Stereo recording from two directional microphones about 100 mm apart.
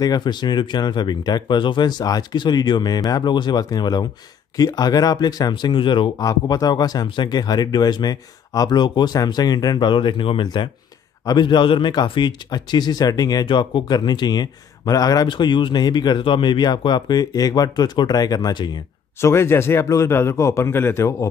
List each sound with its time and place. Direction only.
0.0 s speech: 45° left (ahead or behind)
6.2 s speech: 40° left (ahead or behind)
19.2 s speech: 25° left (ahead or behind)